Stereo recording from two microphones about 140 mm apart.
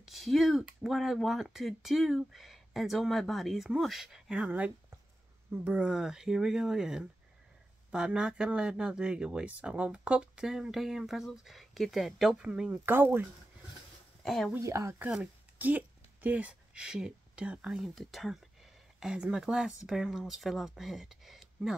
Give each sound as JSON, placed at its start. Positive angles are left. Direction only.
{"t": 0.0, "sound": "speech", "side_deg": 0}
{"t": 14.2, "sound": "speech", "side_deg": 0}
{"t": 14.5, "sound": "speech", "side_deg": -20}
{"t": 15.0, "sound": "speech", "side_deg": -10}